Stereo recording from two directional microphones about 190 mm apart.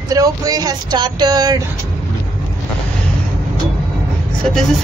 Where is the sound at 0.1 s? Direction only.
20° right (ahead or behind).